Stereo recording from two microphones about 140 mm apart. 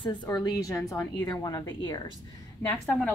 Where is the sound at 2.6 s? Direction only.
15° left (ahead or behind).